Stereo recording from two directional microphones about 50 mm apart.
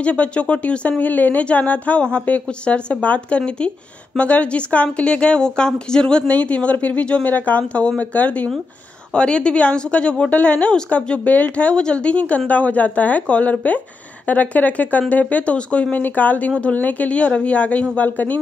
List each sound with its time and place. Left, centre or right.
0.0 s speech: left
16.0 s speech: left